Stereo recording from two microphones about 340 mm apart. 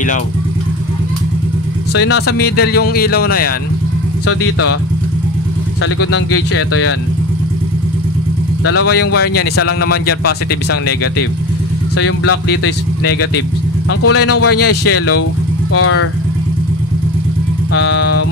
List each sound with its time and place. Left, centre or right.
2.0 s speech: left
2.3 s speech: left
4.3 s speech: left
5.8 s speech: left
8.6 s speech: left
9.7 s speech: left
12.0 s speech: left
13.8 s speech: left
17.7 s music: left